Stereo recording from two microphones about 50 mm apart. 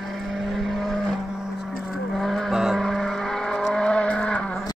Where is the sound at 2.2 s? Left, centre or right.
Centre.